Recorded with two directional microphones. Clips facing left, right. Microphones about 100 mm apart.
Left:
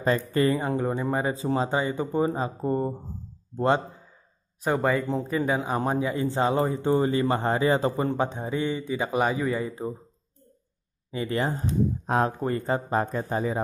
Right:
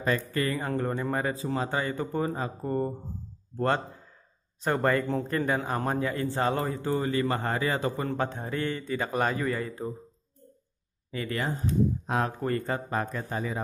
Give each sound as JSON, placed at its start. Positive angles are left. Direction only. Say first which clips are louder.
{"t": 0.0, "sound": "speech", "louder": "left 5 dB", "side_deg": 25}
{"t": 0.7, "sound": "a man's voice", "louder": "left 3 dB", "side_deg": 10}
{"t": 4.6, "sound": "a man's voice", "louder": "left 1 dB", "side_deg": 5}
{"t": 11.1, "sound": "a man's voice", "louder": "left 4 dB", "side_deg": 25}